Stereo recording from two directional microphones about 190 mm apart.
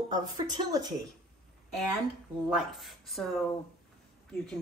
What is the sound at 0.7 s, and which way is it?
Speech, 20° right (ahead or behind).